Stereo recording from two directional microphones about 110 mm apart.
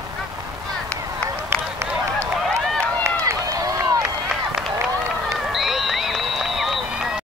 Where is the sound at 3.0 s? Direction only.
30° right (ahead or behind).